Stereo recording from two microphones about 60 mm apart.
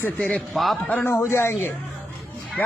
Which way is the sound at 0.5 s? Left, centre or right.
Centre.